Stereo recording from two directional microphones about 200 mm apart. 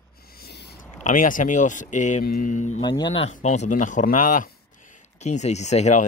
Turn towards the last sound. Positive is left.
turn(degrees=35)  # may be behind; listen again after turning